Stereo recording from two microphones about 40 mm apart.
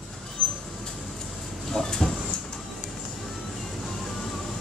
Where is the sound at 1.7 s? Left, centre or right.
Centre.